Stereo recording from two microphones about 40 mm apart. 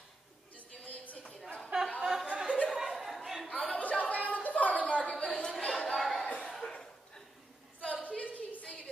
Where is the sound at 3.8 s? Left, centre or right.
Left.